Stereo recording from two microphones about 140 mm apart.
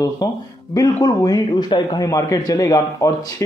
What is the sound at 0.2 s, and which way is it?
Speech, 25° left (ahead or behind).